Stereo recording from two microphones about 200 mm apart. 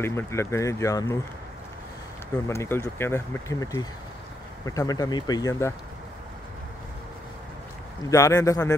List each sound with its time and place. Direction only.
0.0 s speech: 15° left (ahead or behind)
2.4 s speech: 15° left (ahead or behind)
8.1 s speech: 15° left (ahead or behind)